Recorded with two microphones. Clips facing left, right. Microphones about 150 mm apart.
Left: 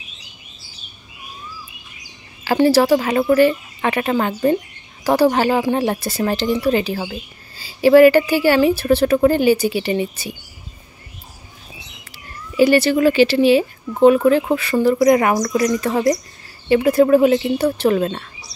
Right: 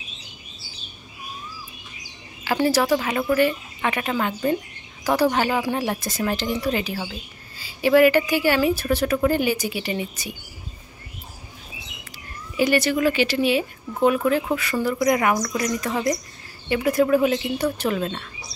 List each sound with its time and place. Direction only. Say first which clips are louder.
2.4 s speech: left 6 dB; 35° left (ahead or behind)
12.5 s speech: left 6 dB; 30° left (ahead or behind)